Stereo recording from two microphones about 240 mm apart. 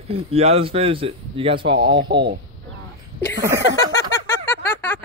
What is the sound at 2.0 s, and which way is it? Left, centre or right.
Speech, right.